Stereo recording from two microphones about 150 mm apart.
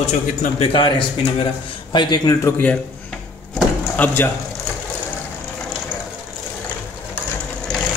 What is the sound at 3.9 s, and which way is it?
Speech, 15° left (ahead or behind).